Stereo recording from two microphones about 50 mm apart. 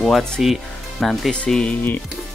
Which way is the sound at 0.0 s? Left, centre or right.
Centre.